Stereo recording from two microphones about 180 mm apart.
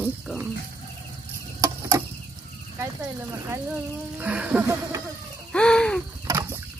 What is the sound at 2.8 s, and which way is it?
Speech, 15° right (ahead or behind).